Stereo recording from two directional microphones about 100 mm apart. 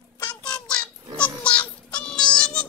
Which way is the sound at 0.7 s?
10° left (ahead or behind).